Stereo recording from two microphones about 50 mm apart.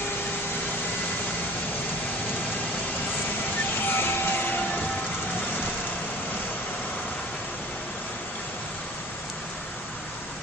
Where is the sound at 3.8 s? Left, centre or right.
Left.